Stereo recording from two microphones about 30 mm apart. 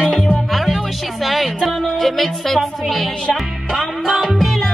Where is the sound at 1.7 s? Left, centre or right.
Centre.